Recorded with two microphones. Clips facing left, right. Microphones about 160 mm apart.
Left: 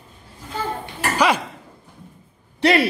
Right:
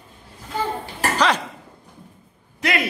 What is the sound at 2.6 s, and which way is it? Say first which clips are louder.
Speech: left 7 dB; 30° left (ahead or behind).